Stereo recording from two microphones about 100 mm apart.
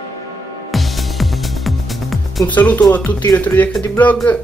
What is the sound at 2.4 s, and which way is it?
Speech, 15° left (ahead or behind).